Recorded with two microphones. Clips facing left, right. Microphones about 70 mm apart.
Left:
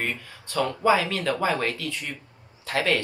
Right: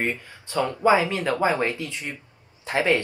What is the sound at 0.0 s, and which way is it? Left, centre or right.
Speech, right.